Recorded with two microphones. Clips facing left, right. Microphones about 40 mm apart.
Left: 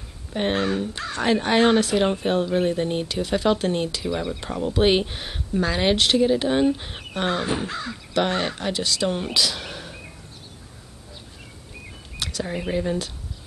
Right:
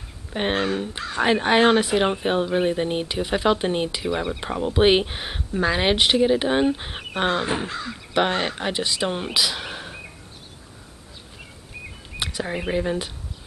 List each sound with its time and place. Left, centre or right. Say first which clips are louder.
0.3 s speech: even; centre
12.2 s speech: right 1 dB; right